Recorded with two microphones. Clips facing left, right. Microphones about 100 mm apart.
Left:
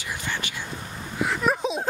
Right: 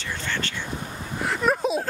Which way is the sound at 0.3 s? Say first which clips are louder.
Right 3 dB; 15° left (ahead or behind).